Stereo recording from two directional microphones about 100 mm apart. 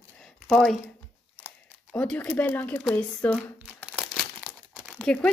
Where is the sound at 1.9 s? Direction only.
10° left (ahead or behind).